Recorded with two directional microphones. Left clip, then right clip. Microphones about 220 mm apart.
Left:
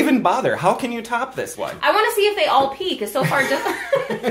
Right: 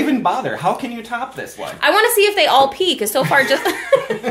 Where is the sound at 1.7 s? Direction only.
55° right (ahead or behind).